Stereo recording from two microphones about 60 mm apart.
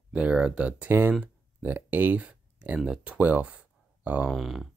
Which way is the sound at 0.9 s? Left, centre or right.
Right.